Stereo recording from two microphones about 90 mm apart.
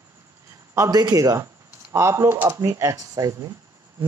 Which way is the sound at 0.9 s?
40° right (ahead or behind).